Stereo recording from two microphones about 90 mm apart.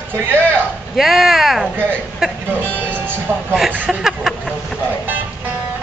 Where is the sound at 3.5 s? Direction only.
5° right (ahead or behind).